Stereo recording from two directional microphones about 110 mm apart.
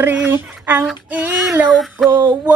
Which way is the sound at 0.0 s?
15° right (ahead or behind).